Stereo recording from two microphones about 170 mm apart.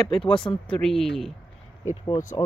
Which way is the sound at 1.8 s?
20° left (ahead or behind).